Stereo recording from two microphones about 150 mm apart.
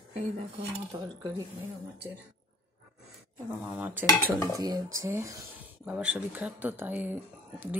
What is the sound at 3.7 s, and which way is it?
Speech, 10° right (ahead or behind).